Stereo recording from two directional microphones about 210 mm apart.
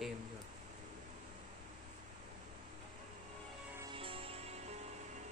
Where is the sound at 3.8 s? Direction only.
25° right (ahead or behind).